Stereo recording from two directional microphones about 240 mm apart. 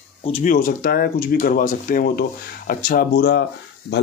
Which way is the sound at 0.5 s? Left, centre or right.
Left.